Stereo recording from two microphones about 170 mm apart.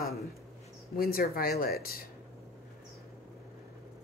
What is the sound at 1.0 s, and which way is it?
Speech, 60° left (ahead or behind).